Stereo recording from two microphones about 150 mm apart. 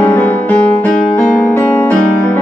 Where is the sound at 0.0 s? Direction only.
15° left (ahead or behind).